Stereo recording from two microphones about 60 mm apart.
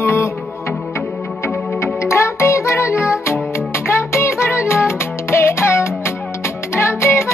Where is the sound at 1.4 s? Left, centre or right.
Left.